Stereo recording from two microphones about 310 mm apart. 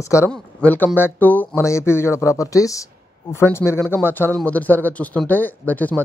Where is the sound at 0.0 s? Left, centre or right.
Centre.